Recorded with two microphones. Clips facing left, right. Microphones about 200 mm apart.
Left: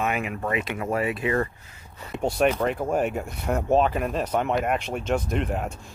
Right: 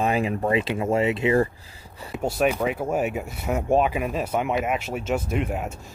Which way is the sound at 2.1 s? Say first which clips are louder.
Even; centre (ahead or behind).